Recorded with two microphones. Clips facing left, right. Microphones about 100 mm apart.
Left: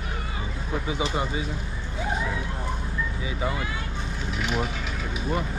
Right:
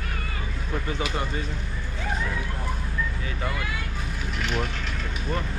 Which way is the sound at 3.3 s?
10° left (ahead or behind).